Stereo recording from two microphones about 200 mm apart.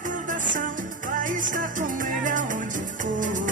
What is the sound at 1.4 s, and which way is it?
Music, 40° right (ahead or behind).